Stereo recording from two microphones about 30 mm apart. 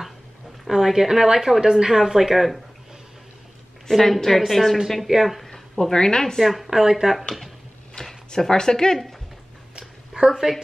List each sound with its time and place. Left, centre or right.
0.7 s speech: centre
3.9 s a woman's voice: centre
5.8 s a woman's voice: left
6.4 s a woman's voice: centre
6.7 s speech: centre
8.0 s a sound: left
8.4 s a woman's voice: left
9.8 s a sound: right